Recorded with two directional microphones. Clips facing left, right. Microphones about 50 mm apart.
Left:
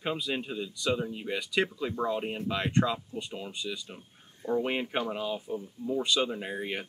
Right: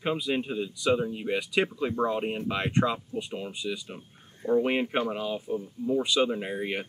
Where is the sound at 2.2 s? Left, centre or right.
Centre.